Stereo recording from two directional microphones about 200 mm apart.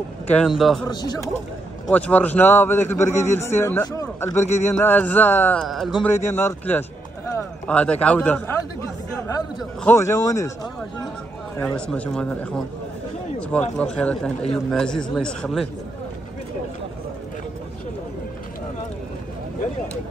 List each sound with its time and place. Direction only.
0.3 s speech: centre (ahead or behind)
0.8 s a man's voice: 20° left (ahead or behind)
1.9 s a man's voice: 5° left (ahead or behind)
6.1 s a man's voice: 10° left (ahead or behind)
9.8 s a man's voice: 15° left (ahead or behind)